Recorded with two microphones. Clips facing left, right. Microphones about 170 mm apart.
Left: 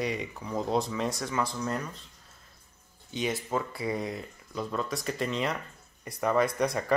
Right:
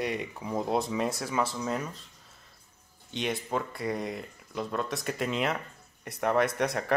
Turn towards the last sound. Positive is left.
turn(degrees=0)  # may be behind; listen again after turning